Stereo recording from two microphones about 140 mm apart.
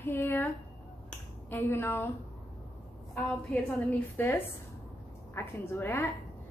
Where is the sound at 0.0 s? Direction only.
15° left (ahead or behind).